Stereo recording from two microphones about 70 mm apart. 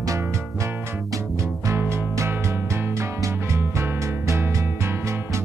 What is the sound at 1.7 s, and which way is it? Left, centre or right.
Music, right.